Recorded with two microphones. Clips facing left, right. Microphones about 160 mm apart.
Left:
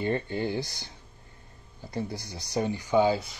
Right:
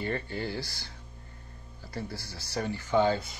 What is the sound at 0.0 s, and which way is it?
Speech, 20° left (ahead or behind).